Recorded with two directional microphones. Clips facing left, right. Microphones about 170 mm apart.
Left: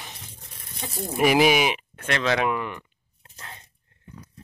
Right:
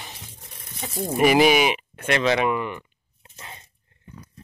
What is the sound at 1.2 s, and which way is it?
Speech, centre (ahead or behind).